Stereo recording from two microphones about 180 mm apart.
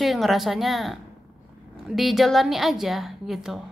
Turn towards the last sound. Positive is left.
turn(degrees=-5)  # may be behind; listen again after turning